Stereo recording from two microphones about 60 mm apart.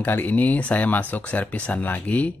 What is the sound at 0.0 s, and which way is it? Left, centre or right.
Speech, left.